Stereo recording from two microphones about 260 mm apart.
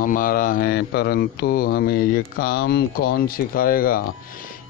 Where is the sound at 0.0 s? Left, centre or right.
Left.